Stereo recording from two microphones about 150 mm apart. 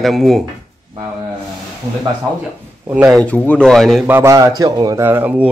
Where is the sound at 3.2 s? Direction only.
10° left (ahead or behind).